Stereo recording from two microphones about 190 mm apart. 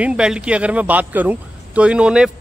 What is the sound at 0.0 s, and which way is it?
A man's voice, 5° right (ahead or behind).